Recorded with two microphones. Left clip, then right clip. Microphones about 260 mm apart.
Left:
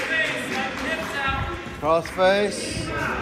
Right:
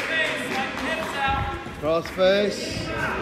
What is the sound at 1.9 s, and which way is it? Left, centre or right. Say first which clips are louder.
Speech: left 1 dB; centre.